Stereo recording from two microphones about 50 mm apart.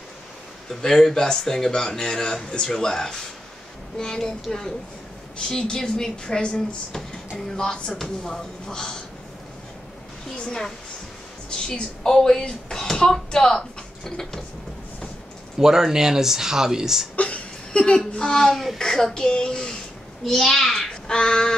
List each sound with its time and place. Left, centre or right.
0.7 s speech: centre
10.4 s speech: centre
15.6 s speech: centre
17.1 s a sound: left
17.7 s a child's voice: centre